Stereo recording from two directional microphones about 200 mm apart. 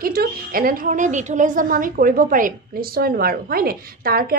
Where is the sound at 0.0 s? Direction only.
50° right (ahead or behind).